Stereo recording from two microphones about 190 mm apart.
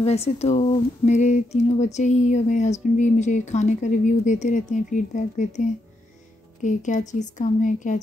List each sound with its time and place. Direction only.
0.0 s speech: 35° left (ahead or behind)